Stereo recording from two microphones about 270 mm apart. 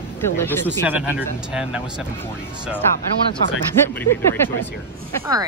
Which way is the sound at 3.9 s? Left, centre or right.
Centre.